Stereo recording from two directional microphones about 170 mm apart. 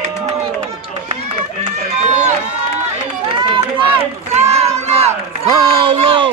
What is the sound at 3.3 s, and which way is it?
Run, 30° right (ahead or behind).